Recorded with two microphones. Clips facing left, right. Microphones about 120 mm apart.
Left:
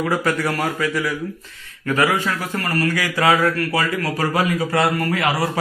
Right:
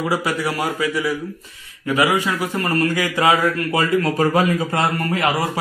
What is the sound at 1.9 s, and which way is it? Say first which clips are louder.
A man's voice: right 1 dB; 15° right (ahead or behind).